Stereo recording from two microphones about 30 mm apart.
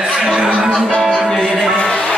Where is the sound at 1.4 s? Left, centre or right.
Centre.